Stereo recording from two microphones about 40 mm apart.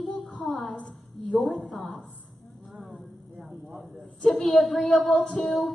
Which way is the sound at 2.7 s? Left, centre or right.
Centre.